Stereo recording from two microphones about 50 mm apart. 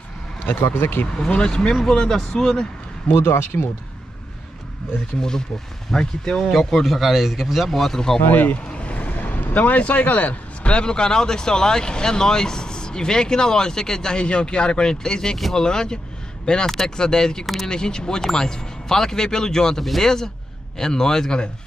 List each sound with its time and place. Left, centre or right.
0.5 s speech: left
1.1 s speech: centre
3.2 s speech: left
5.9 s speech: centre
6.6 s a man's voice: centre
7.7 s speech: centre
8.3 s speech: left
8.6 s vehicle: left
9.1 s vehicle: left
10.7 s speech: centre